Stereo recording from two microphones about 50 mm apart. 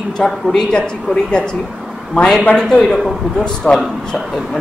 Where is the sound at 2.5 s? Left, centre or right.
Centre.